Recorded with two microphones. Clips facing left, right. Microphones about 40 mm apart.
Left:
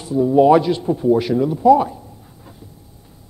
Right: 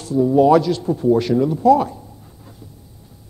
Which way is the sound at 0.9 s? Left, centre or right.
Centre.